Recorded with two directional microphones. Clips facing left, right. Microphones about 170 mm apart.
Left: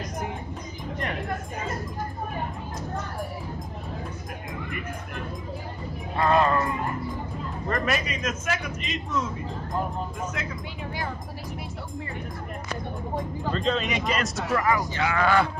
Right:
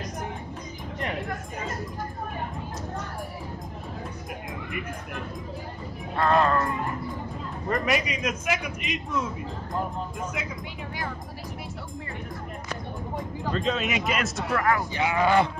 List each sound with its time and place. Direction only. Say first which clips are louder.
6.1 s speech: left 1 dB; 10° left (ahead or behind)
7.7 s a man's voice: right 2 dB; 15° right (ahead or behind)
13.5 s speech: even; 5° right (ahead or behind)
15.0 s speech: right 2 dB; 20° right (ahead or behind)